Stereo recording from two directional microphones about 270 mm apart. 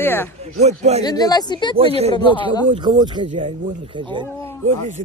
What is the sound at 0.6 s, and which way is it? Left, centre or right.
Speech, right.